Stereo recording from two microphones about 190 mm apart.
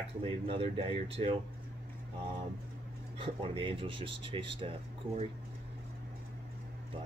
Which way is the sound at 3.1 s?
30° right (ahead or behind).